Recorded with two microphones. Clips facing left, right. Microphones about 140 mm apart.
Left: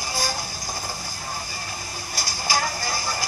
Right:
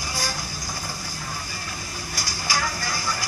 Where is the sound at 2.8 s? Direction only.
30° left (ahead or behind).